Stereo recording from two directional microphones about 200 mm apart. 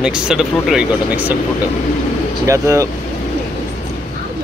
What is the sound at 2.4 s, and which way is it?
Speech, 15° right (ahead or behind).